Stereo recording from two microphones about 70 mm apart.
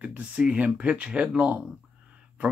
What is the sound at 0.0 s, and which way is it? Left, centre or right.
Speech, centre.